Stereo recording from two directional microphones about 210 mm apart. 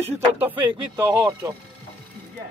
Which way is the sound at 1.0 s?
15° right (ahead or behind).